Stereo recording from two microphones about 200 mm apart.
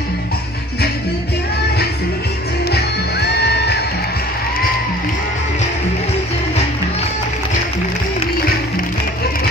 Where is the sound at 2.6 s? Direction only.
55° left (ahead or behind).